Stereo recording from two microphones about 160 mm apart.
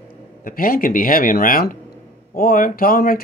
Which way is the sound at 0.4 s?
60° left (ahead or behind).